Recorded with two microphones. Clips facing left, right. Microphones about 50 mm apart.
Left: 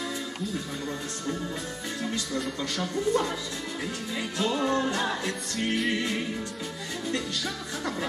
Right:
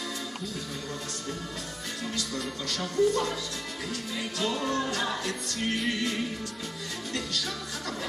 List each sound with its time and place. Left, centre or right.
2.6 s speech: left
4.4 s speech: left